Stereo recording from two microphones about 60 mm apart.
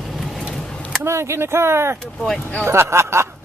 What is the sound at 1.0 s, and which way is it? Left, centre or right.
Speech, right.